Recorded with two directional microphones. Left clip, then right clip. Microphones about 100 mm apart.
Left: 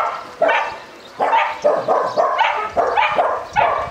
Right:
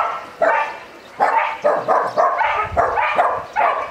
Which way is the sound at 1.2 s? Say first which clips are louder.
Left 1 dB; 30° right (ahead or behind).